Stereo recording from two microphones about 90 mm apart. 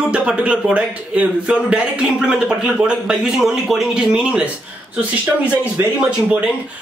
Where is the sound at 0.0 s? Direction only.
15° right (ahead or behind).